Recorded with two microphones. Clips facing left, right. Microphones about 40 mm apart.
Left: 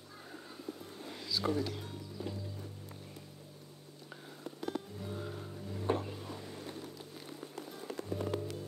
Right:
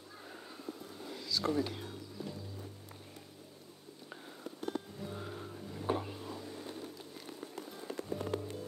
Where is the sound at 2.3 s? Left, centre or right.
Left.